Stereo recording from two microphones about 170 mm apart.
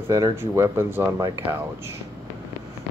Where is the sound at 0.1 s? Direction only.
20° right (ahead or behind).